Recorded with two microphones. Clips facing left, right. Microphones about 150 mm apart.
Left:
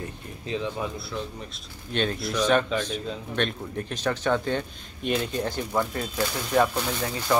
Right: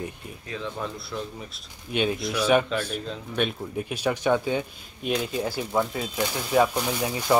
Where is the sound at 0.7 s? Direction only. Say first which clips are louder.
Left 1 dB; centre (ahead or behind).